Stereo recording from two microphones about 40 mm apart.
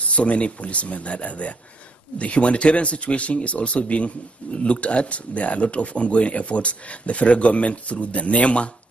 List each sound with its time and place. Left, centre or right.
0.1 s speech: left